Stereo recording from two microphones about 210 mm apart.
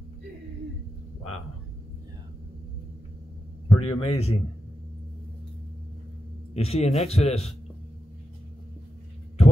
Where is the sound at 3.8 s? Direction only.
30° left (ahead or behind).